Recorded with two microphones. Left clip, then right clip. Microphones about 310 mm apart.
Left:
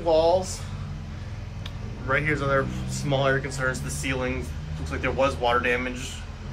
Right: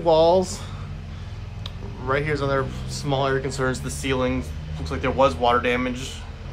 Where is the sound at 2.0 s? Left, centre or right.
Centre.